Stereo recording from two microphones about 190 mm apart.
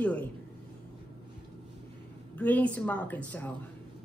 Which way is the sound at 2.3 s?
10° left (ahead or behind).